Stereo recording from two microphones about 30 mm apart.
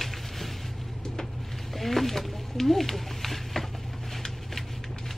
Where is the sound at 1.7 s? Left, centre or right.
Centre.